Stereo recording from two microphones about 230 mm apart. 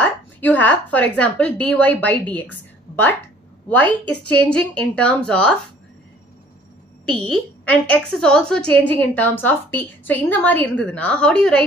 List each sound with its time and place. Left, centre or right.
0.0 s a woman's voice: centre
3.6 s a woman's voice: centre
7.1 s a woman's voice: centre